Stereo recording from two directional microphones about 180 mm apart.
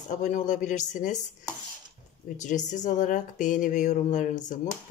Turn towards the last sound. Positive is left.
turn(degrees=45)  # may be behind; listen again after turning